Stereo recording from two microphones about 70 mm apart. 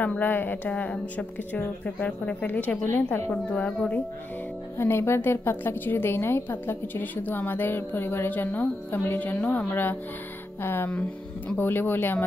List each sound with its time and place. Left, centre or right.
0.2 s speech: left
3.3 s a woman's voice: centre
4.7 s a woman's voice: left